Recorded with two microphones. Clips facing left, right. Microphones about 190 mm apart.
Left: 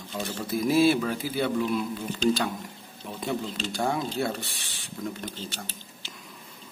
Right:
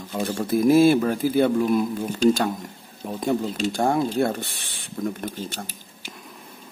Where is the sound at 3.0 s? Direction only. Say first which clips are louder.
Right 7 dB; 45° right (ahead or behind).